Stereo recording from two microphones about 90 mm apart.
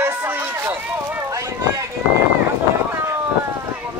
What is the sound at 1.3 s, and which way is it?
Speech, 35° right (ahead or behind).